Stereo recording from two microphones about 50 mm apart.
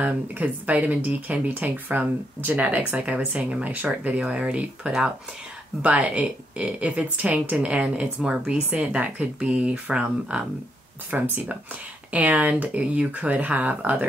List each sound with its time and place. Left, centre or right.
0.0 s speech: right
2.6 s speech: right